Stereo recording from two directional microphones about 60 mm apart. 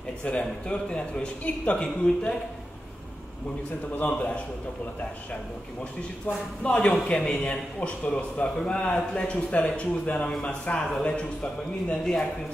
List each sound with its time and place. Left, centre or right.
0.2 s speech: centre
6.2 s speech: left